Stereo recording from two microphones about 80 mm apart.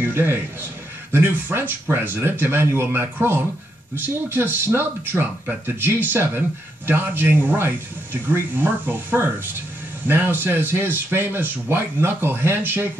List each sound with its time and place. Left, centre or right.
0.0 s speech: right